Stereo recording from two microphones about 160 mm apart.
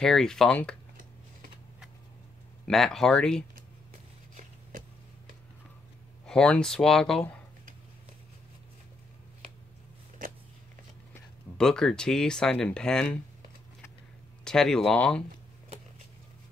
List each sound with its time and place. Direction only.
0.0 s speech: 5° left (ahead or behind)
2.6 s speech: 5° left (ahead or behind)
6.2 s speech: 5° left (ahead or behind)
10.2 s biting: 60° right (ahead or behind)
11.5 s speech: 5° left (ahead or behind)
14.4 s speech: 5° left (ahead or behind)